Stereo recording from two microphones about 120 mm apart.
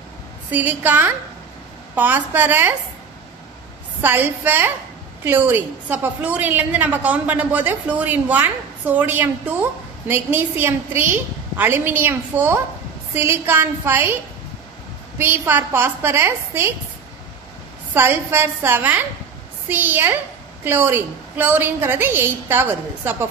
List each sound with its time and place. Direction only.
0.5 s a woman's voice: 15° right (ahead or behind)
4.0 s a woman's voice: 15° right (ahead or behind)
15.1 s a woman's voice: 20° right (ahead or behind)
17.9 s a woman's voice: 20° right (ahead or behind)